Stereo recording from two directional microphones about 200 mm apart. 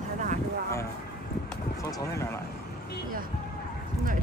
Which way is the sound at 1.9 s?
15° left (ahead or behind).